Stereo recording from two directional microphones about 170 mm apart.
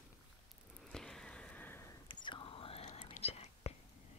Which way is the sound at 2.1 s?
30° left (ahead or behind).